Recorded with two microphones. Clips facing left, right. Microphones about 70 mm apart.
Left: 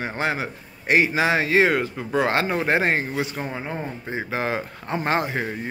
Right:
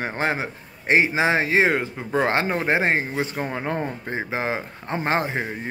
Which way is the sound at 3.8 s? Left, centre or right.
Right.